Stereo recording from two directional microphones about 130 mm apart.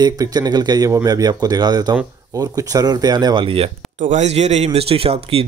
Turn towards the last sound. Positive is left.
turn(degrees=-45)  # may be behind; listen again after turning